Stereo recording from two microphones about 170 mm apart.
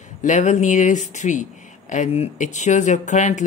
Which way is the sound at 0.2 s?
45° left (ahead or behind).